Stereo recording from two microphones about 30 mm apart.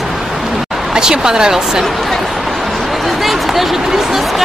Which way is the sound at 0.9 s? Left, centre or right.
Right.